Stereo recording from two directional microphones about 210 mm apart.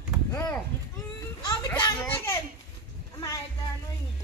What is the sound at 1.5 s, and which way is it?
Children playing, 20° left (ahead or behind).